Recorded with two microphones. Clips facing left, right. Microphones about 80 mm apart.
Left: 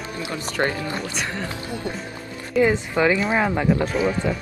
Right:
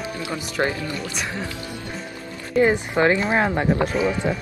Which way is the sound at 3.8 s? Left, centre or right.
Centre.